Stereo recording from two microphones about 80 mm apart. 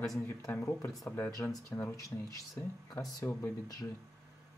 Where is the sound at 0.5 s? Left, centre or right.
Left.